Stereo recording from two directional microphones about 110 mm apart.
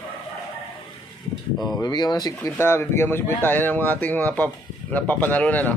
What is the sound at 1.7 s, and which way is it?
Speech, 40° left (ahead or behind).